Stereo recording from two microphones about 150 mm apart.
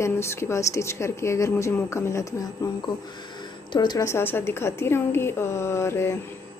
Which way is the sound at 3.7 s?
30° left (ahead or behind).